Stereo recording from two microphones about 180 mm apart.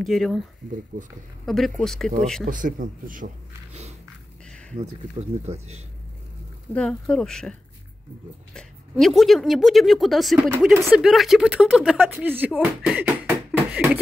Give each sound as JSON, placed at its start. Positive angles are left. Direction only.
{"t": 0.0, "sound": "speech", "side_deg": 0}
{"t": 1.4, "sound": "speech", "side_deg": 0}
{"t": 2.4, "sound": "speech", "side_deg": -45}
{"t": 5.5, "sound": "speech", "side_deg": -35}
{"t": 6.7, "sound": "speech", "side_deg": 5}
{"t": 8.5, "sound": "speech", "side_deg": 0}